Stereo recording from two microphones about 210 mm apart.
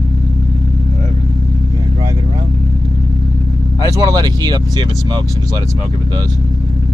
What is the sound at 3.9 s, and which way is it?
Speech, 15° right (ahead or behind).